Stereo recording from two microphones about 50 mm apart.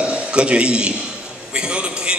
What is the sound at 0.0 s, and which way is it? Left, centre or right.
A man's voice, right.